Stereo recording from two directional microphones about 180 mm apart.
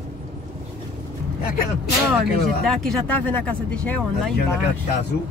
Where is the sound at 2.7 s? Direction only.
Centre (ahead or behind).